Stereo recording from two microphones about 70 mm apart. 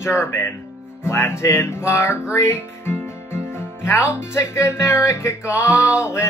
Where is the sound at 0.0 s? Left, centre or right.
Left.